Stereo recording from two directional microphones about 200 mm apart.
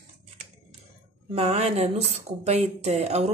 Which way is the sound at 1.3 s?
30° right (ahead or behind).